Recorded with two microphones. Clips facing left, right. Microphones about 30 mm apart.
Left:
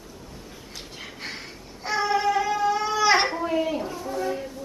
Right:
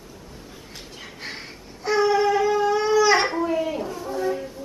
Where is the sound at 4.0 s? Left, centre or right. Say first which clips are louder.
Right 2 dB; centre.